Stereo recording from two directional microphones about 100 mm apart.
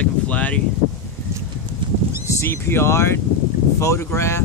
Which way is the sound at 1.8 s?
55° right (ahead or behind).